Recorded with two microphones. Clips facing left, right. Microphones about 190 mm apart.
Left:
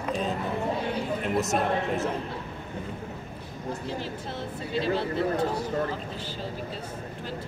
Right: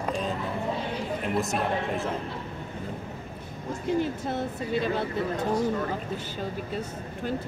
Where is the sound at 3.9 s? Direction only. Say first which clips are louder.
Right 7 dB; 55° right (ahead or behind).